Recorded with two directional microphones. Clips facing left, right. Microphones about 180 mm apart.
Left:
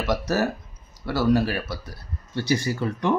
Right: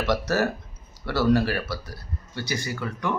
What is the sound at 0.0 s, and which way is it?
Speech, 10° left (ahead or behind).